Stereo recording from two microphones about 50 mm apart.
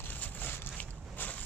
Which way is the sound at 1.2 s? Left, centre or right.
Left.